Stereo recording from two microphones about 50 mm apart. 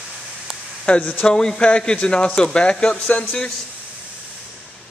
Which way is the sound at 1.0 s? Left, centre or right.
Left.